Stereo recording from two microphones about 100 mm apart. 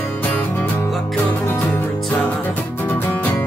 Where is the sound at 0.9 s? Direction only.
Centre (ahead or behind).